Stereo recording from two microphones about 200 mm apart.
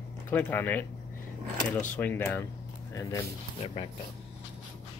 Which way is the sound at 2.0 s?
10° left (ahead or behind).